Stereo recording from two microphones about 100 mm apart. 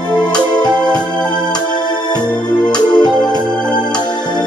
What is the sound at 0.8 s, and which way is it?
Organ, 45° left (ahead or behind).